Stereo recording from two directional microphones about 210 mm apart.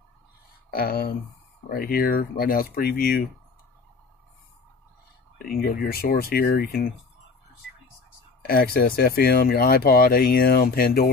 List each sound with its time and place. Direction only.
0.7 s speech: 45° left (ahead or behind)
5.4 s speech: 45° left (ahead or behind)
8.4 s speech: 45° left (ahead or behind)